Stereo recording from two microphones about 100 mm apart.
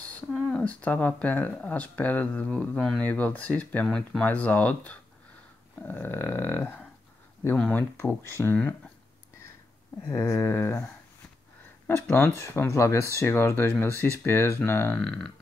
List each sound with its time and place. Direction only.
0.5 s speech: 10° left (ahead or behind)
10.2 s speech: 25° left (ahead or behind)
11.9 s speech: 25° left (ahead or behind)
15.0 s a sound: 5° left (ahead or behind)